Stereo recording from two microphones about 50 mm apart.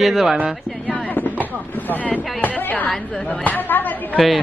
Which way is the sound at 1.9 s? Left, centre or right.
Left.